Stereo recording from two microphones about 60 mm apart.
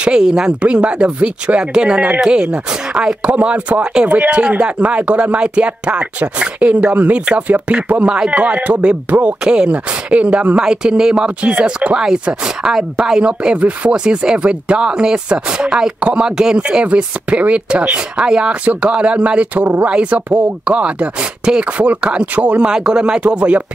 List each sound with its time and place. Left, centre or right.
0.0 s chopping: centre
3.3 s speech: right
10.6 s chopping: centre; by 19.9 s right
19.9 s speech: right